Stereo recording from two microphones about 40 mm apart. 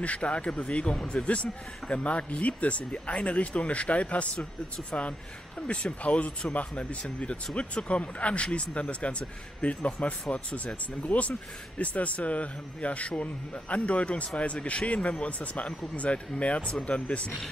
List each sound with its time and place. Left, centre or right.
0.0 s speech: left